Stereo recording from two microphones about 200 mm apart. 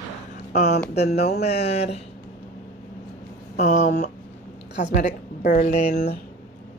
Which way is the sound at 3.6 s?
35° left (ahead or behind).